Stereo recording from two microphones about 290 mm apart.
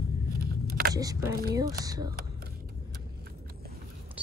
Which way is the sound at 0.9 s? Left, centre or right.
Centre.